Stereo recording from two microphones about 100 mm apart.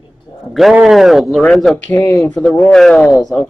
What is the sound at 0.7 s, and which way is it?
Speech, 5° right (ahead or behind).